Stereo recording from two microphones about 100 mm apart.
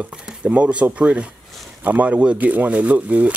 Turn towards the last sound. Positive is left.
turn(degrees=-15)  # may be behind; listen again after turning